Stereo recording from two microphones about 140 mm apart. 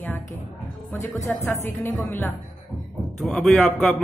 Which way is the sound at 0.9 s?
20° left (ahead or behind).